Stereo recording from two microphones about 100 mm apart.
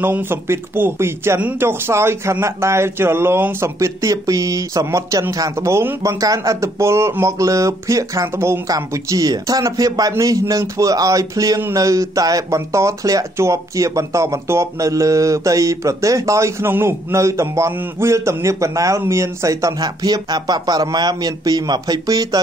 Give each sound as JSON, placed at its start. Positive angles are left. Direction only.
{"t": 0.0, "sound": "speech", "side_deg": -20}